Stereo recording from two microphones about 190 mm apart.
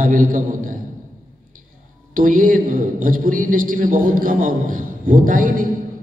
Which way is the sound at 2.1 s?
45° right (ahead or behind).